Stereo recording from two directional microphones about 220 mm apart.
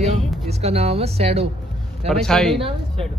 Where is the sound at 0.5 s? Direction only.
30° right (ahead or behind).